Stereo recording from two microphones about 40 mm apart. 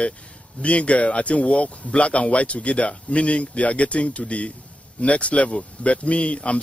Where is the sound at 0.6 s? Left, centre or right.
Left.